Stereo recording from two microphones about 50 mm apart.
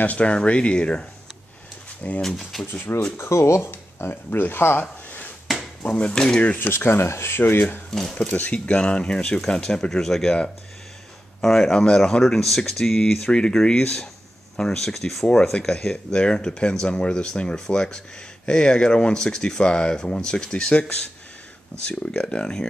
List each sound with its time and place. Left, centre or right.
0.0 s speech: left
2.2 s speech: centre
2.6 s speech: left
3.2 s speech: left
3.6 s speech: left
5.8 s speech: centre
6.6 s speech: left
8.1 s speech: centre
8.4 s speech: left; by 10.3 s centre
11.4 s speech: centre